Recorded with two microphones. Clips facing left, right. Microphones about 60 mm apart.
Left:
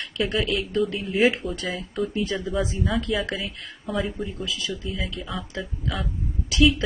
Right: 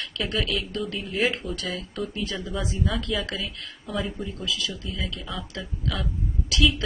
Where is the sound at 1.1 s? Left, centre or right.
Centre.